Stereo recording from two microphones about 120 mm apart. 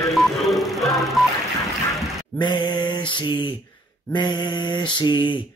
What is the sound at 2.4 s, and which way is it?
Speech, 40° left (ahead or behind).